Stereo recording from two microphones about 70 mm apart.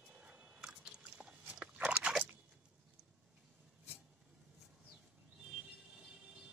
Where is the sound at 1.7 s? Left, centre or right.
Centre.